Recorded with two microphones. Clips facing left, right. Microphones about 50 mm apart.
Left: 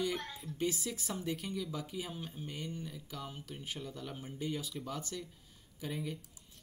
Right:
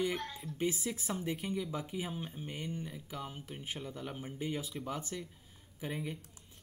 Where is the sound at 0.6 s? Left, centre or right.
Right.